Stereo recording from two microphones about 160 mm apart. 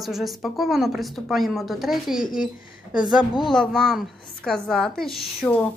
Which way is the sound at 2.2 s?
60° left (ahead or behind).